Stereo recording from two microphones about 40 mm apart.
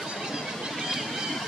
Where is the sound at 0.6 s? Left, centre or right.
Centre.